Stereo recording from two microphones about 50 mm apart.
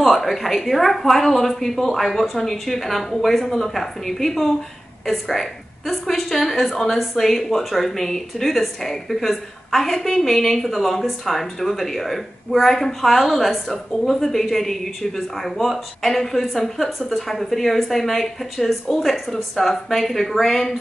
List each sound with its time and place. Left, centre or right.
0.0 s speech: centre